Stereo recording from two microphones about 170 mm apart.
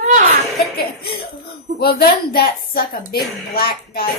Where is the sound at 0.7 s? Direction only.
65° left (ahead or behind).